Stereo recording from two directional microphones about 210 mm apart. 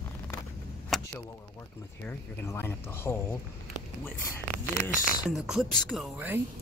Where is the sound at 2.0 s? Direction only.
10° left (ahead or behind).